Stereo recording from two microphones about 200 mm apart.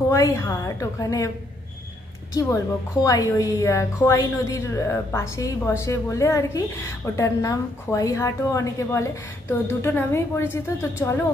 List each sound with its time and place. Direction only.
0.1 s a woman's voice: 15° left (ahead or behind)
2.3 s a woman's voice: 15° left (ahead or behind)